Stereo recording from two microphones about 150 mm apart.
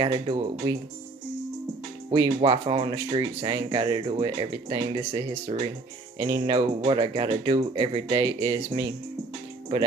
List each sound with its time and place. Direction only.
0.0 s speech: 40° right (ahead or behind)
2.0 s speech: 35° right (ahead or behind)